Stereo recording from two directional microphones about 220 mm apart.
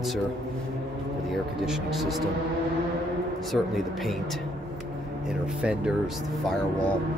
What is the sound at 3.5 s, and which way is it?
Speech, centre (ahead or behind).